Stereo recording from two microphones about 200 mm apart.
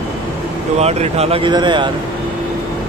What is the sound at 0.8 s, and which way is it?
Speech, 30° right (ahead or behind).